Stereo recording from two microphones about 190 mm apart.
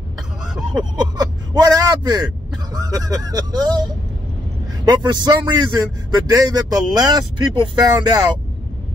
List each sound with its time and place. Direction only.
0.7 s speech: 20° right (ahead or behind)
5.0 s speech: 25° right (ahead or behind)